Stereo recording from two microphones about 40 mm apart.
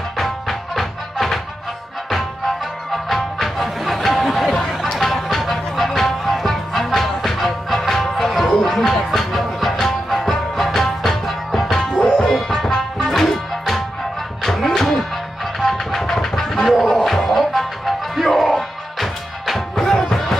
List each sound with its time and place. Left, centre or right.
0.2 s music: centre
4.6 s a sound: centre
4.9 s music: centre
12.3 s music: centre
15.6 s a sound: centre
16.9 s music: centre